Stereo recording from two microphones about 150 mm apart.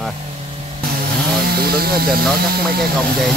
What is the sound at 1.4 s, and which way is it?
Speech, 90° right.